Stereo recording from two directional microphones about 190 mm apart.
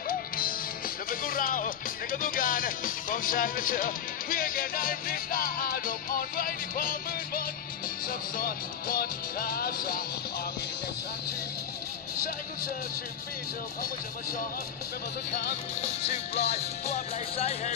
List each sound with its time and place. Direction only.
0.1 s speech: 50° left (ahead or behind)
8.1 s music: 50° left (ahead or behind)
15.8 s music: 35° left (ahead or behind)